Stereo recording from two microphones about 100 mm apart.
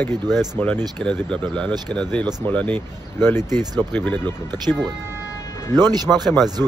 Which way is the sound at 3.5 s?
40° right (ahead or behind).